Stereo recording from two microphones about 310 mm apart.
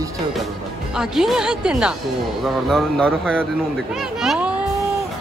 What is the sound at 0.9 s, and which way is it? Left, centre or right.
A woman's voice, centre.